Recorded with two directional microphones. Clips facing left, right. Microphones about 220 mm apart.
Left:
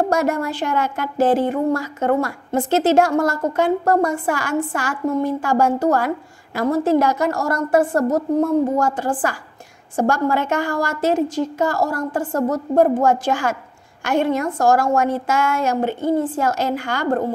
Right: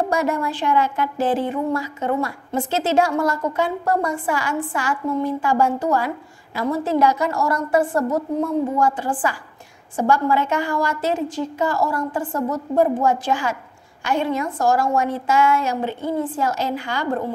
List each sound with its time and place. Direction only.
0.1 s speech: 45° left (ahead or behind)